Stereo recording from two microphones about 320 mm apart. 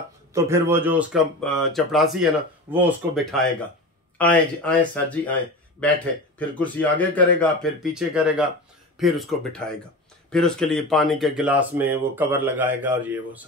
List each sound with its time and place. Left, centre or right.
0.3 s speech: centre